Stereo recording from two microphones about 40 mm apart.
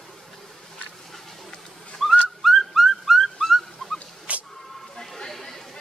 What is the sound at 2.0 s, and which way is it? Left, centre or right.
Whistling, centre.